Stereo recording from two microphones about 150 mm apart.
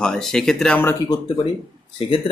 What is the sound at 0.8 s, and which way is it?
Speech, 25° left (ahead or behind).